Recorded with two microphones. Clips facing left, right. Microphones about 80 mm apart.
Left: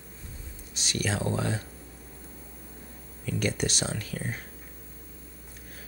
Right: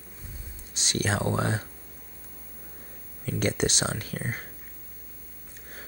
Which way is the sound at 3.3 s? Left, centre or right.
Right.